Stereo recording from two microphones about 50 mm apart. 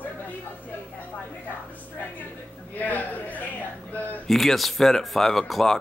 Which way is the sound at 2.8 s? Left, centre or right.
Left.